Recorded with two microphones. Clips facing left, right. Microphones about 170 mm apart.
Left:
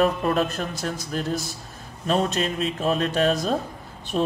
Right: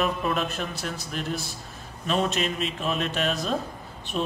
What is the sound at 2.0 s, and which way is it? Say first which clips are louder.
Speech: left 3 dB; 40° left (ahead or behind).